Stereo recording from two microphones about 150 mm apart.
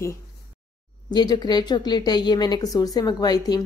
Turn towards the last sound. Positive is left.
turn(degrees=25)  # may be behind; listen again after turning